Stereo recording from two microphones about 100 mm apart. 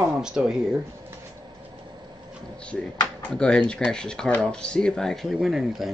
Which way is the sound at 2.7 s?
5° left (ahead or behind).